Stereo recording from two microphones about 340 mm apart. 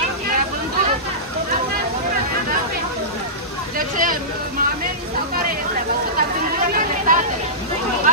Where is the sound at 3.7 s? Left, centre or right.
Right.